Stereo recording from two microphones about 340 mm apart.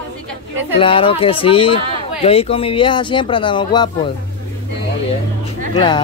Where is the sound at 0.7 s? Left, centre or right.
Centre.